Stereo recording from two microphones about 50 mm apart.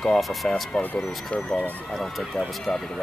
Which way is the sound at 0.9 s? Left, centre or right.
Centre.